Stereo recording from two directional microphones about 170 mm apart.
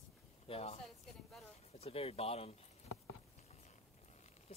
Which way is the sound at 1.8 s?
35° left (ahead or behind).